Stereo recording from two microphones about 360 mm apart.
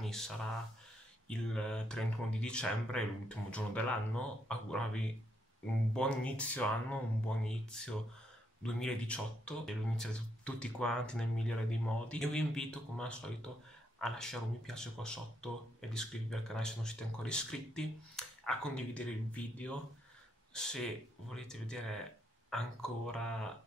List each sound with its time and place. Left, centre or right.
0.0 s speech: centre